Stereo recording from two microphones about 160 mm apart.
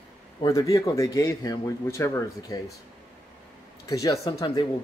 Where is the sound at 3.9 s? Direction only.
20° left (ahead or behind).